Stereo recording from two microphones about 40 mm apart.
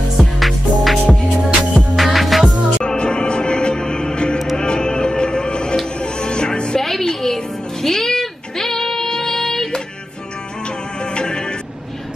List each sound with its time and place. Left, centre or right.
0.2 s music: centre
2.8 s music: left
6.8 s music: centre
11.0 s music: left